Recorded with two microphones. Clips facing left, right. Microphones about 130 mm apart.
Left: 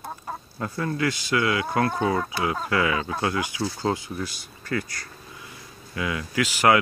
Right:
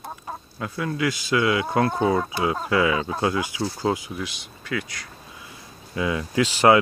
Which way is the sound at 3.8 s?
10° right (ahead or behind).